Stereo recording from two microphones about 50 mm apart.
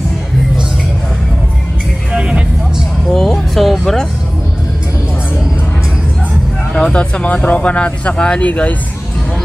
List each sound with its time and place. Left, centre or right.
2.1 s music: right
3.1 s a sound: centre
6.7 s speech: left